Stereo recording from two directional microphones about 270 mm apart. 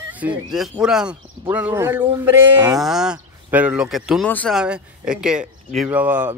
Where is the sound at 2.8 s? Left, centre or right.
Centre.